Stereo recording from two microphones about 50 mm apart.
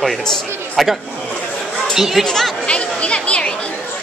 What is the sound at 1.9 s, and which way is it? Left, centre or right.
Speech, centre.